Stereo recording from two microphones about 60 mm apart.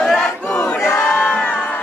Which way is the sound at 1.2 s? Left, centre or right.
Left.